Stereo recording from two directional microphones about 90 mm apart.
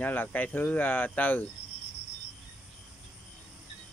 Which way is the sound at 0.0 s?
20° left (ahead or behind).